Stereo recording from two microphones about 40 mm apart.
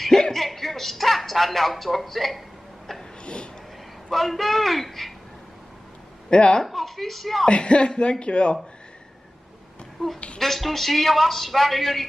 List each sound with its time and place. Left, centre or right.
0.2 s a sound: centre
4.1 s a man's voice: centre
6.3 s speech: left
6.6 s a man's voice: centre
7.4 s speech: left
10.0 s a man's voice: centre